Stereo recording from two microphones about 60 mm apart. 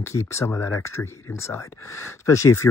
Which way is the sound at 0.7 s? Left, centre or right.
Left.